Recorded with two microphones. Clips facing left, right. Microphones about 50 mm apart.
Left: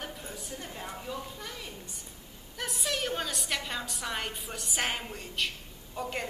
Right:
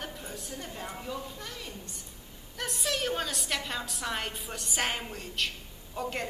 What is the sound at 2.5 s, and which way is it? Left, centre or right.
A woman's voice, centre.